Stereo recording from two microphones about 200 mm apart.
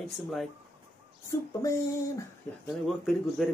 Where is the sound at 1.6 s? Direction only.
15° left (ahead or behind).